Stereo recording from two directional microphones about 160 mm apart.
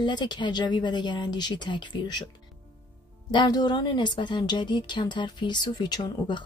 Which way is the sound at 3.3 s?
25° left (ahead or behind).